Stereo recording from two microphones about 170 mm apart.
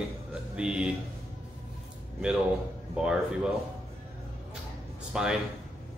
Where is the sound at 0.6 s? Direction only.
5° right (ahead or behind).